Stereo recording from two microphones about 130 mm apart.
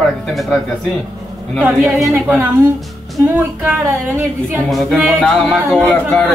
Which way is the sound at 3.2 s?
15° right (ahead or behind).